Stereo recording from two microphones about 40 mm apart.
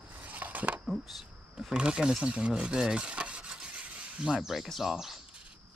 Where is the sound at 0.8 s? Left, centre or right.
Centre.